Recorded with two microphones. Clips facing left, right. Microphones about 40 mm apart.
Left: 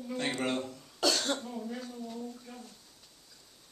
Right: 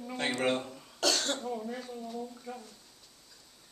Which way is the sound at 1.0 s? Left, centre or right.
Centre.